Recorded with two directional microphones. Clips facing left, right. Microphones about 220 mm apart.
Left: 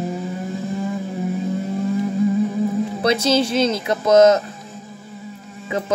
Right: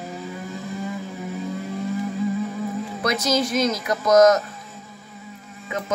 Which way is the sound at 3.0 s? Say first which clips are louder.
Left 4 dB; 30° left (ahead or behind).